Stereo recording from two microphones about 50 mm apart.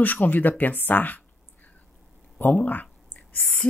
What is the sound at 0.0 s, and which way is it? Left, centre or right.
Speech, left.